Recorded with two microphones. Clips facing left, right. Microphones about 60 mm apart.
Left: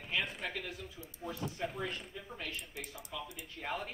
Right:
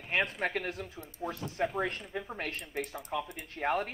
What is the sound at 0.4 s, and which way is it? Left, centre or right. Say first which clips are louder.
Speech: right 8 dB; right.